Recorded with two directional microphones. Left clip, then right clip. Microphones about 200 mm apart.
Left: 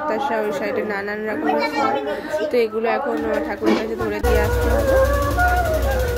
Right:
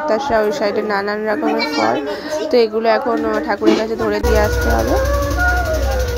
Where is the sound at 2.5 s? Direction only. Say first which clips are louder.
Right 7 dB; 25° right (ahead or behind).